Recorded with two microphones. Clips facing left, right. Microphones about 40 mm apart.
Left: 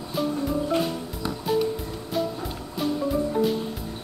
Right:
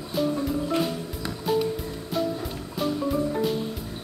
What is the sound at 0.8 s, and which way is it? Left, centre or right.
Music, centre.